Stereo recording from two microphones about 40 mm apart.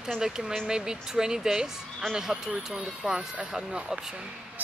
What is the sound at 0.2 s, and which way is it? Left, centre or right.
Speech, centre.